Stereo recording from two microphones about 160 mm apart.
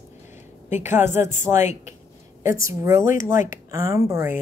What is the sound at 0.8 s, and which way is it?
Speech, 15° right (ahead or behind).